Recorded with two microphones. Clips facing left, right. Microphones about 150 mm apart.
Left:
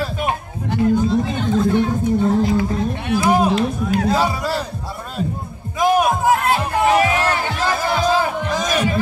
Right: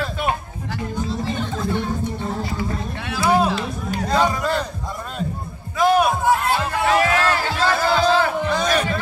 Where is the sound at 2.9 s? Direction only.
20° left (ahead or behind).